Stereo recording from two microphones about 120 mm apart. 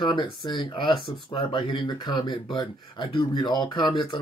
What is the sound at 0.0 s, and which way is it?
Speech, 40° left (ahead or behind).